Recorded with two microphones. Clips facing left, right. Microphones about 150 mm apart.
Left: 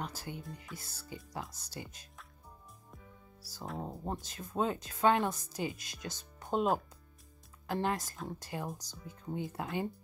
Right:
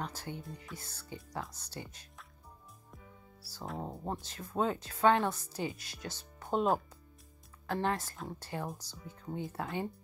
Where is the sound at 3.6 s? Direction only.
Centre (ahead or behind).